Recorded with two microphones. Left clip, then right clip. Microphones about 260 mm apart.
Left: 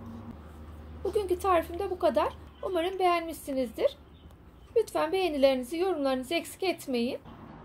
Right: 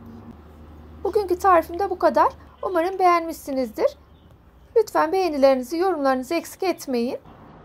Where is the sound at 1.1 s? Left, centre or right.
Centre.